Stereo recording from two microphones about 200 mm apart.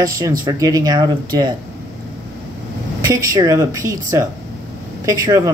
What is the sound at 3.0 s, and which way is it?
Speech, 15° right (ahead or behind).